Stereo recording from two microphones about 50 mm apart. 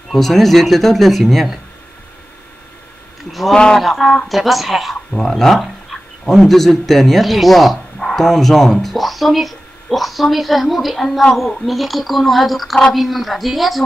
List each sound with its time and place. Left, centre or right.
0.1 s speech: centre
3.3 s a sound: centre
3.5 s speech: centre
3.8 s speech: centre
5.1 s speech: centre